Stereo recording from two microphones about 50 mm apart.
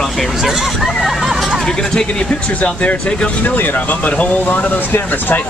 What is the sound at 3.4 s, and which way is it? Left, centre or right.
Speech, left.